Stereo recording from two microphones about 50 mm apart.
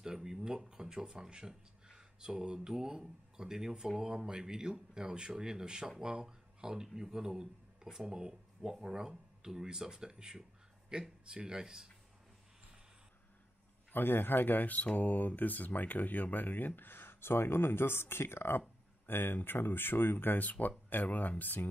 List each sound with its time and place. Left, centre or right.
0.0 s speech: centre
13.9 s speech: left
19.0 s speech: left